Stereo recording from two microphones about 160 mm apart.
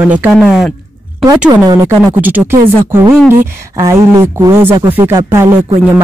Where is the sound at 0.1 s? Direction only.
5° right (ahead or behind).